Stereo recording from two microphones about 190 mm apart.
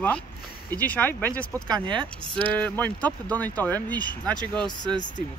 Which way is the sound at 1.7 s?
25° right (ahead or behind).